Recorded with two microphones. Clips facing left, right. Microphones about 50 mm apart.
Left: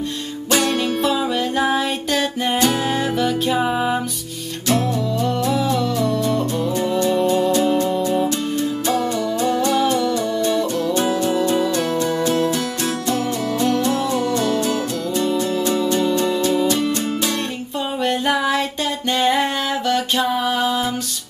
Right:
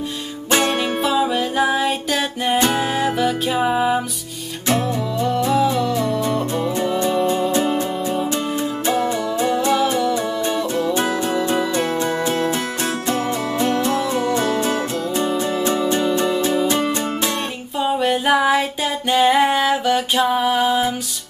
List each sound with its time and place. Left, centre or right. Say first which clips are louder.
0.5 s music: right 1 dB; right
1.0 s music: right 1 dB; centre
5.2 s music: right 4 dB; centre
7.5 s music: left 2 dB; right
10.4 s music: left 1 dB; right
11.1 s music: left 1 dB; centre
11.4 s music: left 1 dB; right
14.4 s music: even; right
18.0 s music: right 2 dB; centre